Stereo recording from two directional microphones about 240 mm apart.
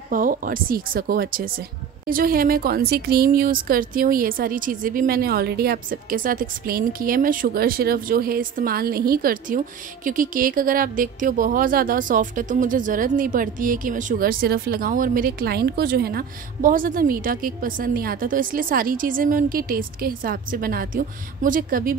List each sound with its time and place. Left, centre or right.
0.1 s speech: right